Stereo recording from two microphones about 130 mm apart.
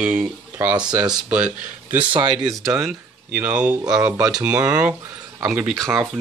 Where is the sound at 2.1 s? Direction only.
35° right (ahead or behind).